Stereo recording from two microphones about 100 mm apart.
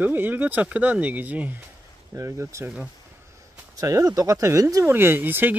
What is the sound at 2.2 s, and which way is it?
Speech, 30° right (ahead or behind).